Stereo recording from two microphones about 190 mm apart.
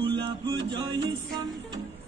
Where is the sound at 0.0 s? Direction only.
25° right (ahead or behind).